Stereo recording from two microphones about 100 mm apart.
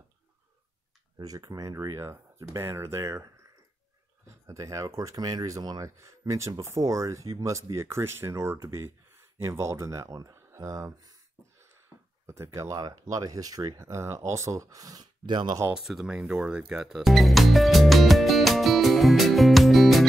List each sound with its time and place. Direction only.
1.1 s speech: 40° right (ahead or behind)
4.5 s speech: 35° right (ahead or behind)
12.3 s speech: 30° right (ahead or behind); by 15.6 s 45° right (ahead or behind)
15.7 s speech: centre (ahead or behind)